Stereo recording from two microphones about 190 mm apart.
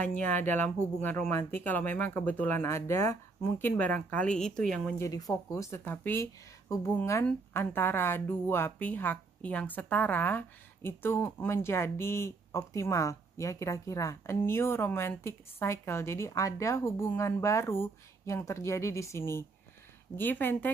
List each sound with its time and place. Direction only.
0.2 s a woman's voice: 10° left (ahead or behind)
5.0 s a woman's voice: 20° left (ahead or behind)